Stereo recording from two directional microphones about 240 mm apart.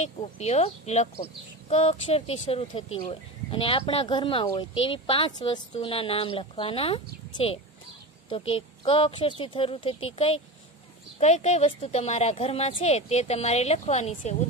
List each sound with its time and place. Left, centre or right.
0.0 s speech: left